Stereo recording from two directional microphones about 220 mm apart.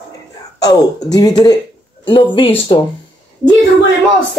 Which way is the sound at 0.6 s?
15° left (ahead or behind).